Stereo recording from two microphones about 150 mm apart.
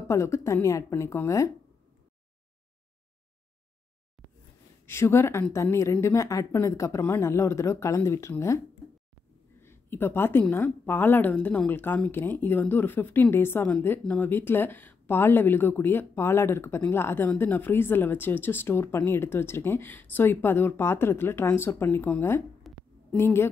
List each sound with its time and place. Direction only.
0.1 s a woman's voice: 20° left (ahead or behind)
4.8 s a woman's voice: 20° left (ahead or behind)
9.6 s a woman's voice: 15° left (ahead or behind)
22.7 s a sound: centre (ahead or behind)
23.1 s a woman's voice: 15° left (ahead or behind)